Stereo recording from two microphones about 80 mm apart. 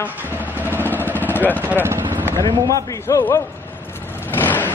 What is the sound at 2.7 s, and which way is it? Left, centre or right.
Speech, left.